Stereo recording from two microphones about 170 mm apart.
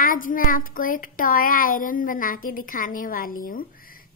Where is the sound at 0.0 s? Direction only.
55° left (ahead or behind).